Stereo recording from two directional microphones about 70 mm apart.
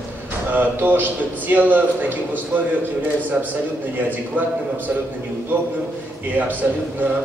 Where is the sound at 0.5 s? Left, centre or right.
Right.